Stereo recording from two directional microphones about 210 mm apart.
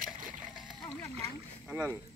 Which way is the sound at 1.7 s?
5° right (ahead or behind).